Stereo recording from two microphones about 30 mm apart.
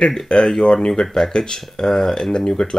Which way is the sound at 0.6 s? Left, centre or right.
Left.